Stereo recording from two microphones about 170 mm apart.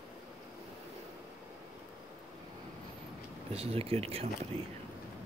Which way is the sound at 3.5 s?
35° right (ahead or behind).